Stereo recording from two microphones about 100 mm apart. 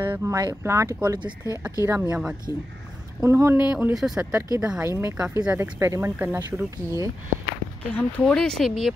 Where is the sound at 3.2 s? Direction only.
25° right (ahead or behind).